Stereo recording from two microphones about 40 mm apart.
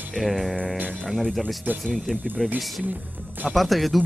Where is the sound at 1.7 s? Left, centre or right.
Right.